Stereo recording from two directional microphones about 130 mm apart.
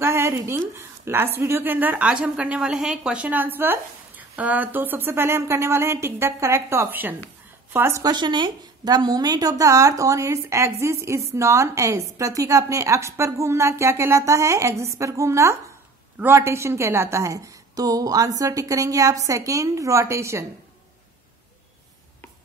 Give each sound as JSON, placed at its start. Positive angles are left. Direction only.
{"t": 0.0, "sound": "a woman's voice", "side_deg": -20}
{"t": 8.0, "sound": "a woman's voice", "side_deg": -35}